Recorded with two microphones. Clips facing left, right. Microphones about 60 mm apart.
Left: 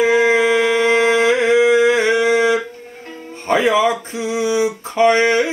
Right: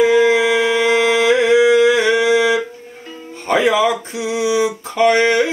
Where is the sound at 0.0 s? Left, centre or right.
Left.